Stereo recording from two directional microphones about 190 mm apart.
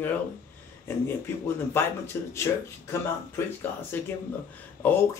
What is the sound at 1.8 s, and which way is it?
Speech, 10° left (ahead or behind).